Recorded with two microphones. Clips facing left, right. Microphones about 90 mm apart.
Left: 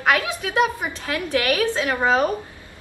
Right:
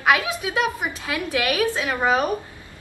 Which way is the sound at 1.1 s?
35° left (ahead or behind).